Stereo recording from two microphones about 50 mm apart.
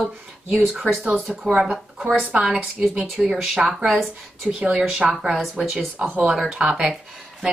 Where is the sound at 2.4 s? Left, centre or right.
Centre.